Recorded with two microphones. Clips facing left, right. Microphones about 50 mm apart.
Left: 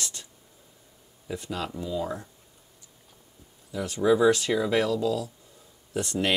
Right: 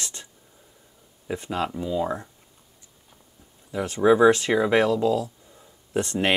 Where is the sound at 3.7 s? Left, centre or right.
Right.